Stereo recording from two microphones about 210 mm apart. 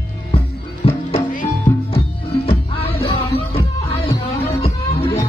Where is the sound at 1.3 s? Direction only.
35° left (ahead or behind).